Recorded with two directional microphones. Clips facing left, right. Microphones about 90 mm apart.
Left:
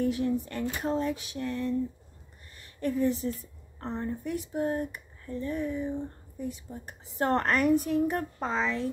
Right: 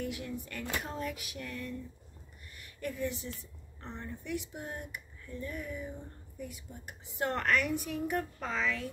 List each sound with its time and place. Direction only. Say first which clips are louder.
0.0 s a woman's voice: left 11 dB; 35° left (ahead or behind)
0.8 s a sound: left 9 dB; 30° left (ahead or behind)
2.5 s a woman's voice: left 9 dB; 35° left (ahead or behind)